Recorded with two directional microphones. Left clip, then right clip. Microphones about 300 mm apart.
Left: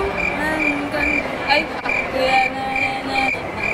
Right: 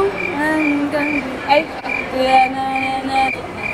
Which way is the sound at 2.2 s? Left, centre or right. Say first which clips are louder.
Right 5 dB; right.